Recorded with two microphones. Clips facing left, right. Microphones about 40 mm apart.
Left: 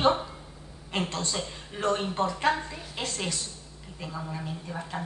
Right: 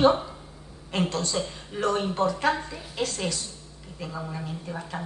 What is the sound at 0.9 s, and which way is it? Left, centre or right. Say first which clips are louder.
A woman's voice: right 4 dB; left.